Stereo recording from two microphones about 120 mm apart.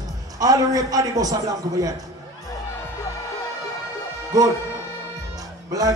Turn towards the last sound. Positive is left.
turn(degrees=-30)  # may be behind; listen again after turning